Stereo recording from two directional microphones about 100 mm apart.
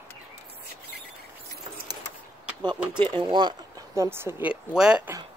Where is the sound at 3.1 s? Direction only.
50° right (ahead or behind).